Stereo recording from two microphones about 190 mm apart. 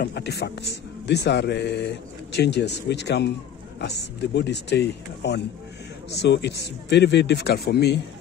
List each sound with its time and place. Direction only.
0.0 s a man's voice: 60° left (ahead or behind)